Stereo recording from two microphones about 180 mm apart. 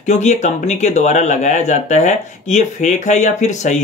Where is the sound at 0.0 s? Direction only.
40° left (ahead or behind).